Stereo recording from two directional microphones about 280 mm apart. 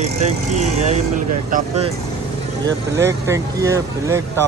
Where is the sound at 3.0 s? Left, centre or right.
Centre.